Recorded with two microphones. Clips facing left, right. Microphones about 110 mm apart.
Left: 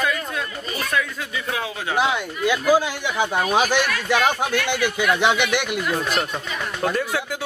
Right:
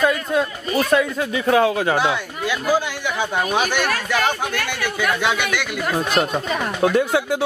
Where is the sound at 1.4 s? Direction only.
45° right (ahead or behind).